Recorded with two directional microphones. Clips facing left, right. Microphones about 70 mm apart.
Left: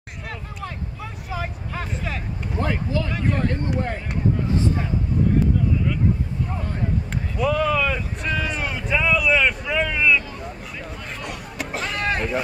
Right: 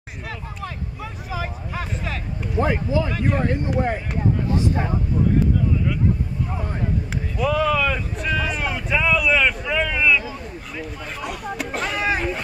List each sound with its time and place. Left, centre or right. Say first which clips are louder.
1.3 s speech: right 1 dB; centre
2.6 s speech: right 4 dB; centre
4.6 s speech: right 1 dB; right
7.3 s speech: right 1 dB; centre
11.1 s a sound: right 5 dB; centre